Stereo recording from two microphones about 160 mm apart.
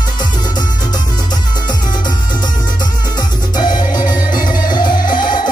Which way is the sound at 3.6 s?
25° left (ahead or behind).